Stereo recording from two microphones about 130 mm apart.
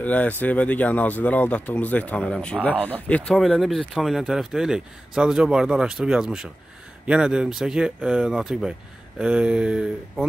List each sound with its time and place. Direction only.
0.0 s speech: 10° left (ahead or behind); by 10.2 s 5° right (ahead or behind)